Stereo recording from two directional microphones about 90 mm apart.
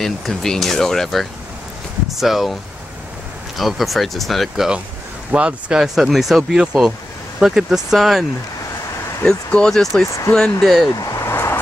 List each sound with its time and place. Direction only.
0.0 s speech: 5° left (ahead or behind)
3.5 s speech: centre (ahead or behind)
5.3 s speech: 10° right (ahead or behind)
9.2 s speech: 10° left (ahead or behind)
10.9 s a sound: 40° left (ahead or behind)